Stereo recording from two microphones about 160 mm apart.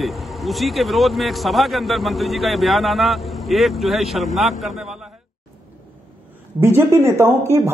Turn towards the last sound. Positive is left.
turn(degrees=-15)  # may be behind; listen again after turning